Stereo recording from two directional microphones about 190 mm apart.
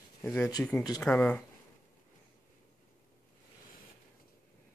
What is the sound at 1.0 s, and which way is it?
Speech, 5° left (ahead or behind).